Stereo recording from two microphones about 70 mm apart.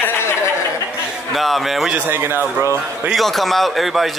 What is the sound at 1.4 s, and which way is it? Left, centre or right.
Speech, centre.